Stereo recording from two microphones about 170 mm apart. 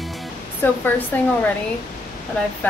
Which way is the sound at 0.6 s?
10° left (ahead or behind).